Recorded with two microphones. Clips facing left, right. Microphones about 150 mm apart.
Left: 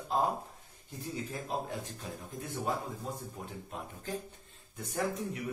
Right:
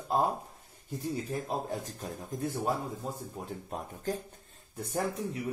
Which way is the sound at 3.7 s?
40° right (ahead or behind).